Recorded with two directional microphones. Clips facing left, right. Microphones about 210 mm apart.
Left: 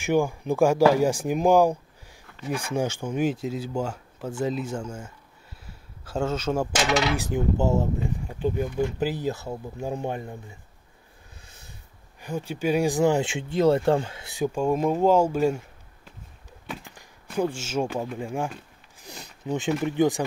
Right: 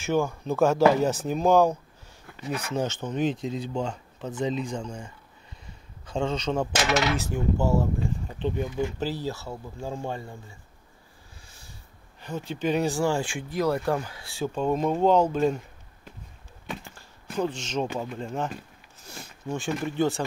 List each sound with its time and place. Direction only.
0.0 s speech: 15° left (ahead or behind)
7.2 s speech: 15° left (ahead or behind)
8.3 s speech: 5° left (ahead or behind)
9.0 s speech: 15° left (ahead or behind)
11.4 s snort: 20° left (ahead or behind)
12.2 s speech: 10° left (ahead or behind)
16.9 s speech: 15° left (ahead or behind)
18.9 s a sound: 15° left (ahead or behind)
19.8 s speech: 15° left (ahead or behind)